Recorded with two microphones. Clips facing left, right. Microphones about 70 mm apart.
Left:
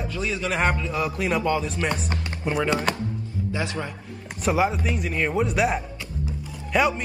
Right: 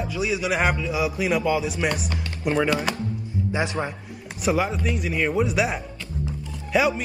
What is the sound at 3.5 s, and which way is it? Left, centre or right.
Speech, right.